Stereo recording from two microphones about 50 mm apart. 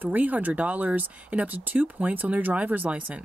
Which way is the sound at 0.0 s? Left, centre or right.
Right.